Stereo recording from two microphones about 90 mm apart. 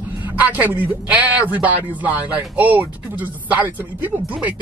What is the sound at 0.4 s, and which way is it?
Speech, 20° right (ahead or behind).